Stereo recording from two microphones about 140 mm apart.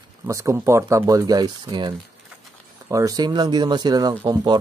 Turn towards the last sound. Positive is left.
turn(degrees=-30)  # may be behind; listen again after turning